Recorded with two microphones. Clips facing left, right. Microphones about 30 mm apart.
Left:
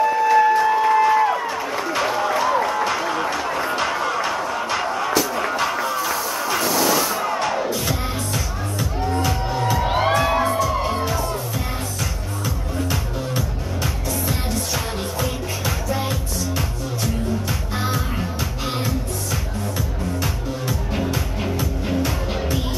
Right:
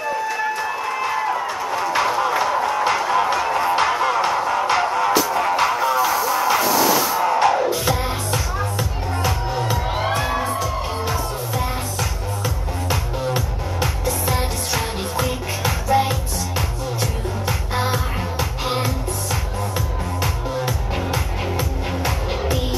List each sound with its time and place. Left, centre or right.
0.3 s a sound: centre
1.9 s music: centre
3.1 s run: centre
3.7 s music: centre
5.1 s music: centre
9.8 s music: centre
10.4 s music: centre
13.2 s music: centre
20.5 s music: centre